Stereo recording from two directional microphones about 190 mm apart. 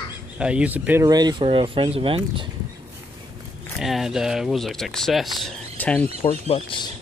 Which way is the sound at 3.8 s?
Centre (ahead or behind).